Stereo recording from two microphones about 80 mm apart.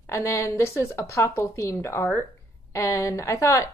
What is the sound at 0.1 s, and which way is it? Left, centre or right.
Speech, left.